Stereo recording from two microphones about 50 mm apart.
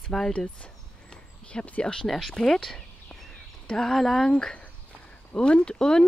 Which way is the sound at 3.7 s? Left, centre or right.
Centre.